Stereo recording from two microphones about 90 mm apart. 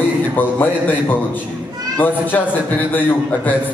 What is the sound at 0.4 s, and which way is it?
A man's voice, 20° left (ahead or behind).